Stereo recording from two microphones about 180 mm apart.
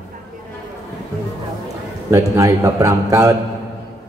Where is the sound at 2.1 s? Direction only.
15° right (ahead or behind).